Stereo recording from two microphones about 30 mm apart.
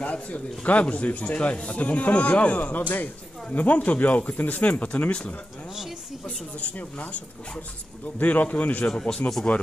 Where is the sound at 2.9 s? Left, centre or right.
Left.